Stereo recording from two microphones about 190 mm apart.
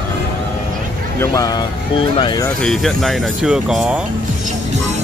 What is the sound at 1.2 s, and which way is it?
Speech, 20° left (ahead or behind).